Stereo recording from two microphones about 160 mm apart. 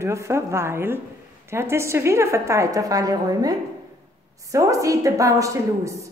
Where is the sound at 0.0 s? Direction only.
15° right (ahead or behind).